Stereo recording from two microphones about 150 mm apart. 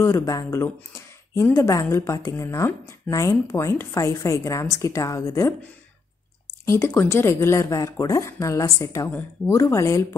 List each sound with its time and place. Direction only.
0.0 s speech: 20° left (ahead or behind)
6.6 s speech: 20° left (ahead or behind)